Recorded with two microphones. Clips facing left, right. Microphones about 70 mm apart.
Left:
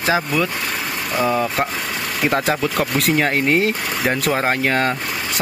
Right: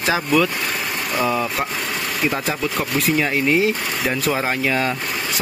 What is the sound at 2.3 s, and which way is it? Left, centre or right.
Speech, left.